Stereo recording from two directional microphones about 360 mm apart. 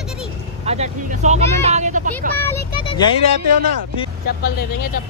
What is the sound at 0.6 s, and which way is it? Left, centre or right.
Speech, centre.